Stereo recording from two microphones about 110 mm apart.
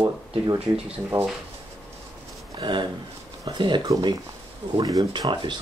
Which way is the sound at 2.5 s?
45° right (ahead or behind).